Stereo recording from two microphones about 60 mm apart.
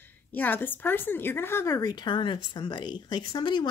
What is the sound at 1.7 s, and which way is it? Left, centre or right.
Speech, left.